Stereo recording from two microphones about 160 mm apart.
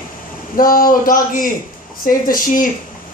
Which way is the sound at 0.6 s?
60° left (ahead or behind).